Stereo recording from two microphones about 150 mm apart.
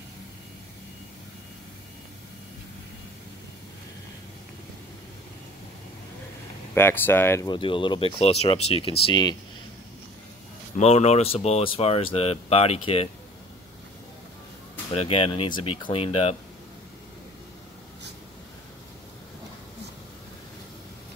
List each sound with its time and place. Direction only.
6.7 s speech: 15° left (ahead or behind)
7.4 s speech: 35° left (ahead or behind)
10.8 s speech: 45° left (ahead or behind)
15.0 s speech: 40° left (ahead or behind)